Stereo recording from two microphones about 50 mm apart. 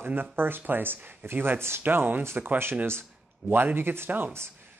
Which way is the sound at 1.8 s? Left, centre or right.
Right.